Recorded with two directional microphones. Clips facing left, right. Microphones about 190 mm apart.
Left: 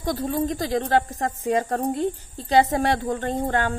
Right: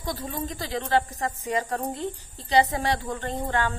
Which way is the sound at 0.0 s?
50° left (ahead or behind).